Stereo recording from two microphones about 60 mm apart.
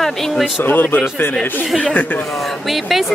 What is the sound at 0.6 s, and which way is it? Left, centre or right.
Speech, left.